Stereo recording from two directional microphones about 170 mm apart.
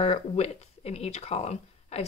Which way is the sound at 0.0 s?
40° left (ahead or behind).